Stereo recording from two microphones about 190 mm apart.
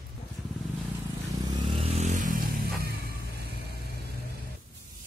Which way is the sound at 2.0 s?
40° right (ahead or behind).